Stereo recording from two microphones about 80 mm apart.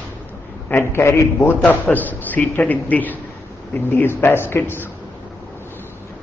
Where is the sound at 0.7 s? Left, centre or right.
Left.